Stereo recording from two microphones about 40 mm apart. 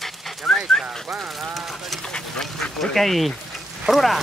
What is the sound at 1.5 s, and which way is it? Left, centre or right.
Run, centre.